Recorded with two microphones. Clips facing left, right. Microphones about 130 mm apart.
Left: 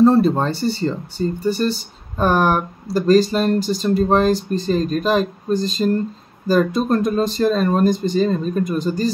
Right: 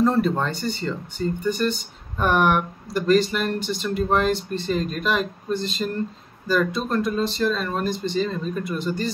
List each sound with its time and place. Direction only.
0.0 s speech: 30° left (ahead or behind)